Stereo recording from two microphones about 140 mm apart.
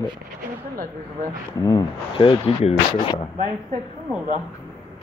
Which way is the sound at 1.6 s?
30° left (ahead or behind).